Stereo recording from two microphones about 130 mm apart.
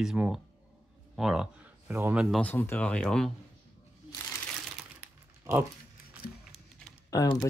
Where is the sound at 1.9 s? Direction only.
20° right (ahead or behind).